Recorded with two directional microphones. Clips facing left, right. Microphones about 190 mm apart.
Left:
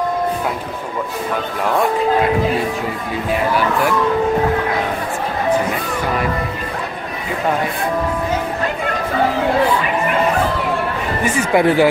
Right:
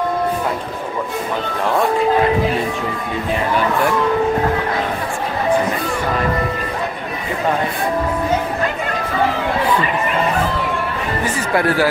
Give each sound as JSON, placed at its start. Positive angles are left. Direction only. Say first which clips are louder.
{"t": 11.2, "sound": "speech", "louder": "left 4 dB", "side_deg": 20}